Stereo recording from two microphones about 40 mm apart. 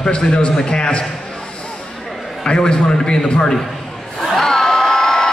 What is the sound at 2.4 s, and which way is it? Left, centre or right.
A man's voice, left.